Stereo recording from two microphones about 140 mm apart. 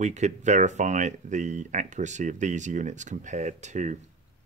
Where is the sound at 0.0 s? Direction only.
55° right (ahead or behind).